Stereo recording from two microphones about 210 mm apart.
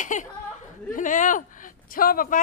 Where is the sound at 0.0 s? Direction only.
35° left (ahead or behind).